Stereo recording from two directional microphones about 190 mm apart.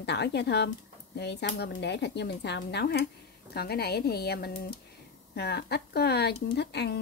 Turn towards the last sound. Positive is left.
turn(degrees=60)  # may be behind; listen again after turning